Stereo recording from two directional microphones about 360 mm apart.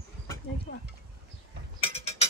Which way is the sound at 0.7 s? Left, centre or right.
Left.